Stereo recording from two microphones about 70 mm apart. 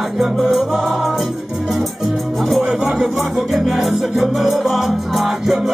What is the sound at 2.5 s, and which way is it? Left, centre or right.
Music, centre.